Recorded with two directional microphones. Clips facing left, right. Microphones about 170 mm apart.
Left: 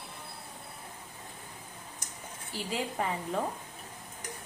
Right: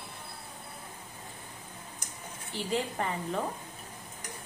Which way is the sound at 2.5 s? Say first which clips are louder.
Right 2 dB; 5° left (ahead or behind).